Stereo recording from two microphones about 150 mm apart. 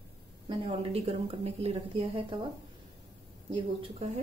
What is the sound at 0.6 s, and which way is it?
A woman's voice, 35° right (ahead or behind).